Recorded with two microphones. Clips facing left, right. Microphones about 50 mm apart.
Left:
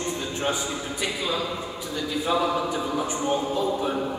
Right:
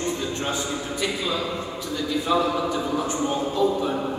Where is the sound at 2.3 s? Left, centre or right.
Centre.